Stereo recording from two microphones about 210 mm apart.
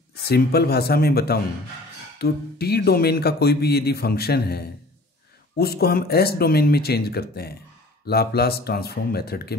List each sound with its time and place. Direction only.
0.2 s speech: 50° left (ahead or behind)